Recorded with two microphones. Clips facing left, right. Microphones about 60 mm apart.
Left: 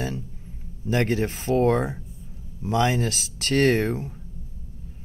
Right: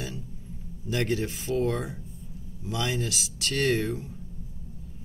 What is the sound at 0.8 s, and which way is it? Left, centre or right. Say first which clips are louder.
Speech: left 5 dB; left.